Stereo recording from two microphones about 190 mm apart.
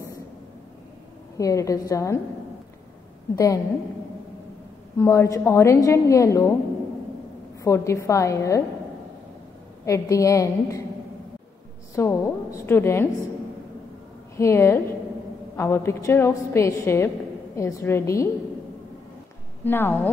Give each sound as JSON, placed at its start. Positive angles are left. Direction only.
{"t": 1.4, "sound": "a woman's voice", "side_deg": 15}
{"t": 3.3, "sound": "a woman's voice", "side_deg": 15}
{"t": 4.9, "sound": "a woman's voice", "side_deg": 15}
{"t": 7.6, "sound": "a woman's voice", "side_deg": 15}
{"t": 9.8, "sound": "a woman's voice", "side_deg": 15}
{"t": 11.9, "sound": "a woman's voice", "side_deg": 15}
{"t": 14.3, "sound": "a woman's voice", "side_deg": 15}
{"t": 19.6, "sound": "a woman's voice", "side_deg": 10}